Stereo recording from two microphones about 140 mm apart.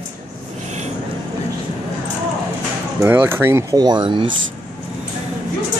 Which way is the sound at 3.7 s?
30° right (ahead or behind).